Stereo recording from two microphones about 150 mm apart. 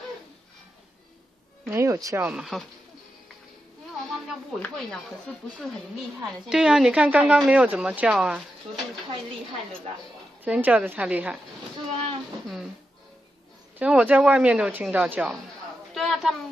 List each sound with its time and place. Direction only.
1.7 s speech: 20° right (ahead or behind)
2.2 s speech: centre (ahead or behind)
4.6 s speech: 5° left (ahead or behind)
6.5 s speech: 5° right (ahead or behind)
10.4 s speech: 10° right (ahead or behind)
13.7 s speech: 10° right (ahead or behind)
15.9 s a sound: centre (ahead or behind)